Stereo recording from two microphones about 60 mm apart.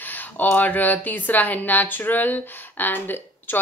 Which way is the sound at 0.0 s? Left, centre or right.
Left.